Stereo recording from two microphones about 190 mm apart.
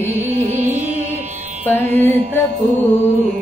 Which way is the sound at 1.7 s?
10° left (ahead or behind).